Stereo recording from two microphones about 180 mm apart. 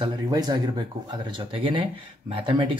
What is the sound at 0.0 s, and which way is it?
Speech, 20° right (ahead or behind).